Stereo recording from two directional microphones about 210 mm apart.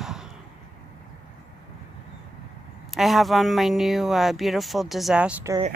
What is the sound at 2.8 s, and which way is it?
Speech, centre (ahead or behind).